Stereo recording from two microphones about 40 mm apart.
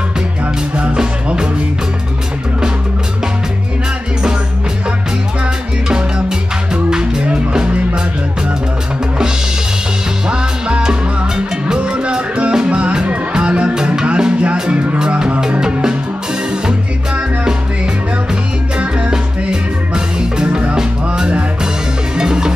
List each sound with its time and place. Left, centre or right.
0.9 s music: centre
5.9 s music: right
10.3 s music: right
18.8 s music: right